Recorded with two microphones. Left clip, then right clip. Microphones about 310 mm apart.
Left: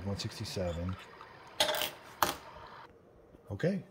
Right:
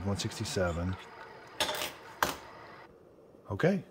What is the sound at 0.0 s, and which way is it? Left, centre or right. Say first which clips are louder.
Speech: right 4 dB; centre.